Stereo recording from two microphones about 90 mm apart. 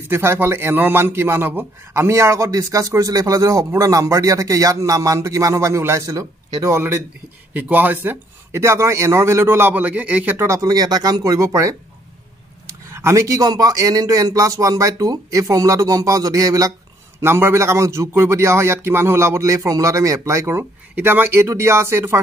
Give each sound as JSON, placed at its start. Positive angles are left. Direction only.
{"t": 0.1, "sound": "a man's voice", "side_deg": -25}
{"t": 7.5, "sound": "a man's voice", "side_deg": -20}
{"t": 10.3, "sound": "a man's voice", "side_deg": -30}
{"t": 12.9, "sound": "a man's voice", "side_deg": -30}
{"t": 17.2, "sound": "a man's voice", "side_deg": -25}